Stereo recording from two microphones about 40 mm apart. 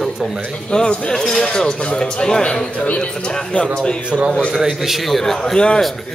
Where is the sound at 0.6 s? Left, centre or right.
Left.